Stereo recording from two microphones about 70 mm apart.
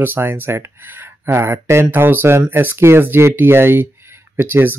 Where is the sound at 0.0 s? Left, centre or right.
Right.